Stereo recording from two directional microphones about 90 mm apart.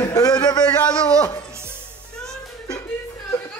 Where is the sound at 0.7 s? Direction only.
15° left (ahead or behind).